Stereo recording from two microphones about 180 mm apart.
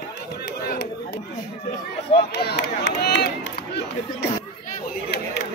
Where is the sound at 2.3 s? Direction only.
65° left (ahead or behind).